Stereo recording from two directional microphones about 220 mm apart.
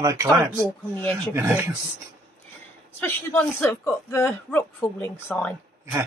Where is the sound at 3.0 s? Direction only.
10° left (ahead or behind).